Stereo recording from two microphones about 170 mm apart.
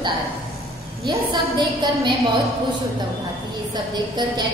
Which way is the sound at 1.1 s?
25° right (ahead or behind).